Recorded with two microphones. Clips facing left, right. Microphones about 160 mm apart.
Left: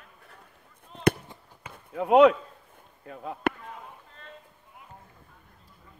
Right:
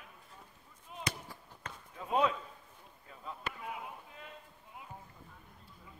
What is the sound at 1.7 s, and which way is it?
Basketball bounce, 70° left (ahead or behind).